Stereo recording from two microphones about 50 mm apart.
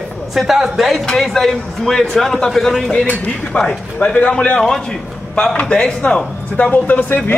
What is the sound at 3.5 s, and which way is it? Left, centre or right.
A man's voice, centre.